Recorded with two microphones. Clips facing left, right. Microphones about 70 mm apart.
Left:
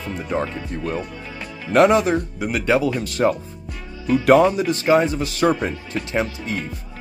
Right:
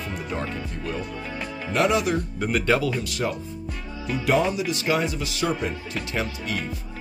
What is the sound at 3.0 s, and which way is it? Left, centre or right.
Speech, left.